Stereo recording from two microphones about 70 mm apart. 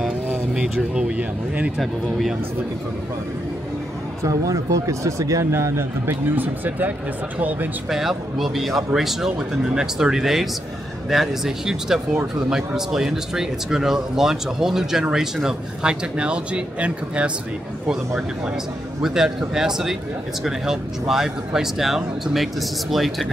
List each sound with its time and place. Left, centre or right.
0.3 s speech: centre
4.2 s speech: right
5.5 s a man's voice: right
6.3 s speech: right
7.9 s speech: centre
19.0 s speech: centre